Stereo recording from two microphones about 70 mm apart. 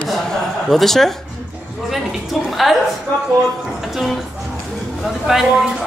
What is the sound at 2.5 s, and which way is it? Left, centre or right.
Speech, centre.